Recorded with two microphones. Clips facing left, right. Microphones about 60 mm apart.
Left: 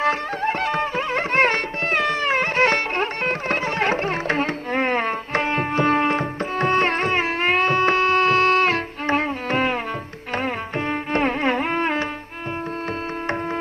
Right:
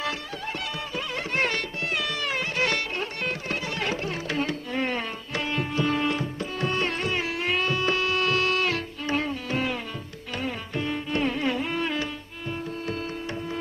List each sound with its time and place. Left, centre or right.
0.0 s music: left